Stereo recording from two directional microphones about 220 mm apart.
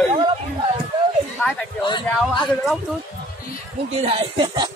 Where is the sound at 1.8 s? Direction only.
20° left (ahead or behind).